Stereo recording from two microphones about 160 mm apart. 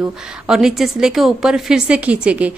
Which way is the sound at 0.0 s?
5° right (ahead or behind).